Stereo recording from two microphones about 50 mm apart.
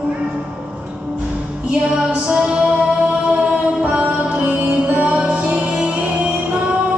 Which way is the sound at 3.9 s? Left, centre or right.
Right.